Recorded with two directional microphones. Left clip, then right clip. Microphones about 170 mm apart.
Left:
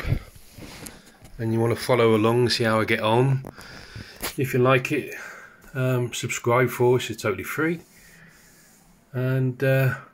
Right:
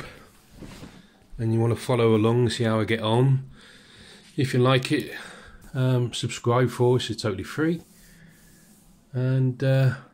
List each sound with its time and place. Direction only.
1.4 s speech: centre (ahead or behind)
9.1 s speech: 5° left (ahead or behind)
9.6 s speech: 5° right (ahead or behind)